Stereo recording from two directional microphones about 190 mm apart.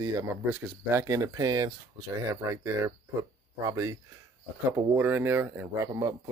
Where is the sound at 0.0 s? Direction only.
15° right (ahead or behind).